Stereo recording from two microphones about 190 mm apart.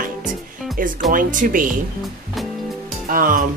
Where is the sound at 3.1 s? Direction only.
45° right (ahead or behind).